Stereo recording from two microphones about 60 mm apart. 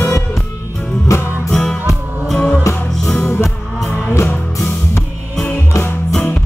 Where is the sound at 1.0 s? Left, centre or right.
Left.